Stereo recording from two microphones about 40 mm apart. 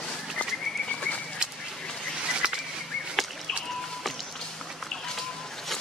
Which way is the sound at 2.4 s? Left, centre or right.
Right.